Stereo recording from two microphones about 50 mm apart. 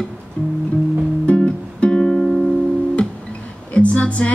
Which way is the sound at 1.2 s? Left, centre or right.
Left.